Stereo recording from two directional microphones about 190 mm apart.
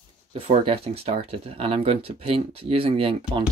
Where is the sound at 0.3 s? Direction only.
30° right (ahead or behind).